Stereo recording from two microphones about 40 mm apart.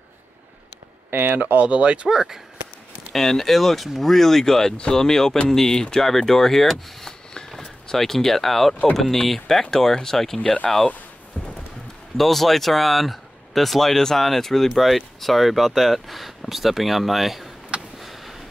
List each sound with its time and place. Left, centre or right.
1.1 s speech: right
1.7 s speech: right
2.0 s speech: centre
3.1 s speech: centre
11.4 s music: left
12.2 s speech: centre
17.9 s a sound: centre